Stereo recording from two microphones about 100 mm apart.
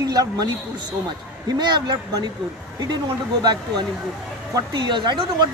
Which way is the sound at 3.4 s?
45° right (ahead or behind).